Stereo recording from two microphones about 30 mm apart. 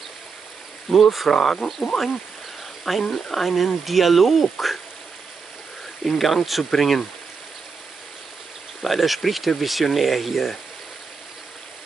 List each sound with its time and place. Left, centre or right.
0.9 s speech: centre
1.3 s speech: centre
1.8 s speech: centre
2.8 s speech: centre
6.0 s speech: centre
6.7 s speech: centre
8.8 s speech: centre